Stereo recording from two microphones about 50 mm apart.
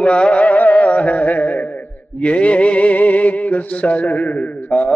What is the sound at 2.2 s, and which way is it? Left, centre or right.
Music, left.